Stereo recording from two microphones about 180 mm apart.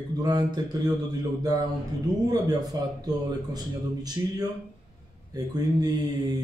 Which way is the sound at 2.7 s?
20° right (ahead or behind).